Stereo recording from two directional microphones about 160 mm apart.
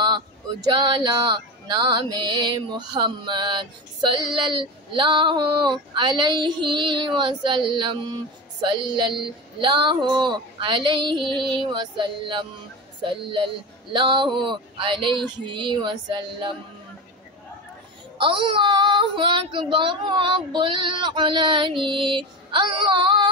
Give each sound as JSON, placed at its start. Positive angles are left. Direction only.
{"t": 0.7, "sound": "music", "side_deg": -25}
{"t": 13.0, "sound": "child singing", "side_deg": -30}
{"t": 13.9, "sound": "music", "side_deg": -30}
{"t": 18.1, "sound": "child singing", "side_deg": -30}